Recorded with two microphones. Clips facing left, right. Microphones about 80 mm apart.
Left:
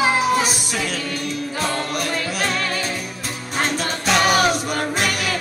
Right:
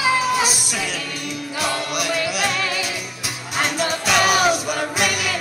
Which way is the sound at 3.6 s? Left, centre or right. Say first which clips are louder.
Right 1 dB; left.